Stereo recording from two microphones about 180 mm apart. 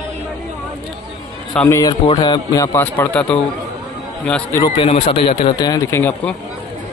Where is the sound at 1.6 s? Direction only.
15° left (ahead or behind).